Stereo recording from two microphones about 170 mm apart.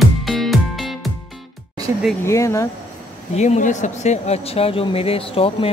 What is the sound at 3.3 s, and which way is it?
Speech, 40° left (ahead or behind).